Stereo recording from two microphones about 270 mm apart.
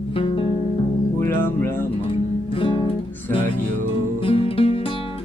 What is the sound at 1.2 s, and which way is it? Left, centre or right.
Music, centre.